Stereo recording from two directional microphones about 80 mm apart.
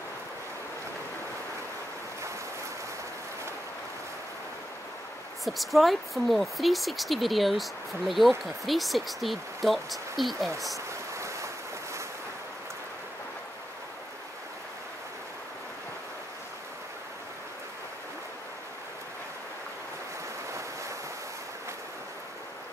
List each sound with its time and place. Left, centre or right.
5.4 s speech: centre
11.1 s waves: right